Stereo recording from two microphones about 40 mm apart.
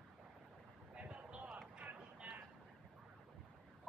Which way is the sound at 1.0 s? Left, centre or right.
Right.